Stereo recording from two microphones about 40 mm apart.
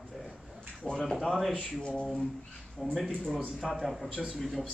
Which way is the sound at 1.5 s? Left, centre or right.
Left.